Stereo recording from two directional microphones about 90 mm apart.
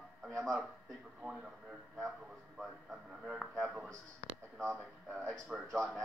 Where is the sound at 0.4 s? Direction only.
Centre (ahead or behind).